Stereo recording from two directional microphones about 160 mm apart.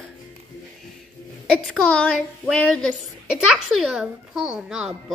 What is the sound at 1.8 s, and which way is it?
A woman's voice, 5° left (ahead or behind).